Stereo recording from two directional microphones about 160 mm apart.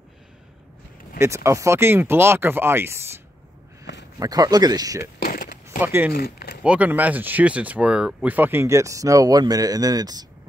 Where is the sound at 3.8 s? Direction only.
90° left.